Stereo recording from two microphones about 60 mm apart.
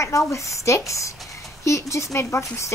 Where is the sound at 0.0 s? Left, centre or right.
Left.